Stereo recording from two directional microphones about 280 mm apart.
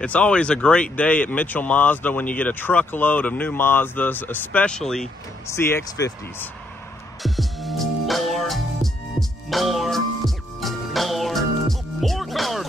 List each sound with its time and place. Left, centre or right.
0.0 s speech: centre
7.2 s music: centre